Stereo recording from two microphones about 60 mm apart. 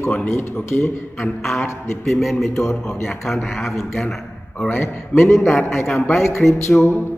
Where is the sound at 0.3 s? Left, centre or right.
Left.